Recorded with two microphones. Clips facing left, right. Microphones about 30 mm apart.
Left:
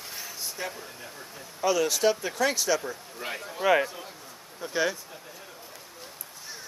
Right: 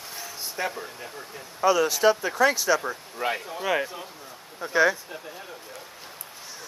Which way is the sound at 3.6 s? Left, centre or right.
Centre.